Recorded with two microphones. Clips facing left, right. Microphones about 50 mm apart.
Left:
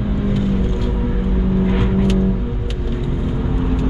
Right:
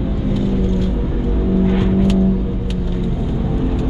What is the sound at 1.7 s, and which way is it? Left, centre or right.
Vehicle, centre.